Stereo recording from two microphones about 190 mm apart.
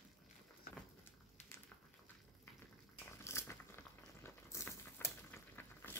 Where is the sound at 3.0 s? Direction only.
15° left (ahead or behind).